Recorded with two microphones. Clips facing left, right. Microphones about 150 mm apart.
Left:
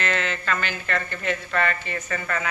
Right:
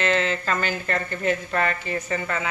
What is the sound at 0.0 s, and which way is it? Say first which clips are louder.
Speech: right 4 dB; 30° right (ahead or behind).